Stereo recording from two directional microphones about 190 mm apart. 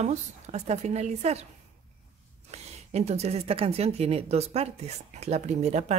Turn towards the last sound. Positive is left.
turn(degrees=-35)  # may be behind; listen again after turning